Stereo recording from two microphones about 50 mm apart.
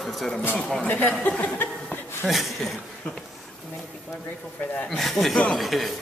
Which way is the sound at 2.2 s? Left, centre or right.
Centre.